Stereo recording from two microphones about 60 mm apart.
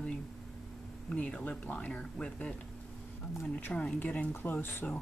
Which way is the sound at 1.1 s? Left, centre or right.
Left.